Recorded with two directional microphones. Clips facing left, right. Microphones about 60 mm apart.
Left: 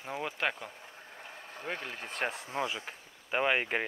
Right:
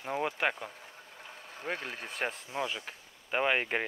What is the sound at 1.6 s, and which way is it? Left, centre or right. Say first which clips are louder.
Speech: right 2 dB; right.